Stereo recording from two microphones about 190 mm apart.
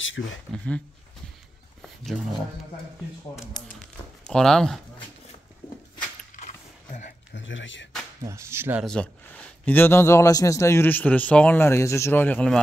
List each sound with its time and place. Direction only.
0.0 s a sound: 80° left
0.5 s a man's voice: 5° left (ahead or behind)
4.3 s speech: 5° left (ahead or behind)
6.3 s a sound: 40° left (ahead or behind)
7.3 s speech: 80° left
8.2 s speech: 15° right (ahead or behind)
8.8 s a man's voice: 5° left (ahead or behind)